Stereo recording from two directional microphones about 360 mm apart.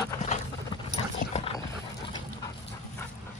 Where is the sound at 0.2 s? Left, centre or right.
Centre.